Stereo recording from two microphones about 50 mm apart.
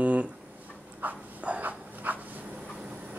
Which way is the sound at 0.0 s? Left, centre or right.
Right.